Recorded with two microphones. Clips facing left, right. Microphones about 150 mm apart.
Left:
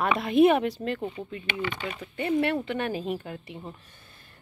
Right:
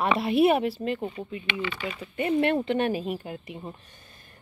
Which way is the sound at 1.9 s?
15° right (ahead or behind).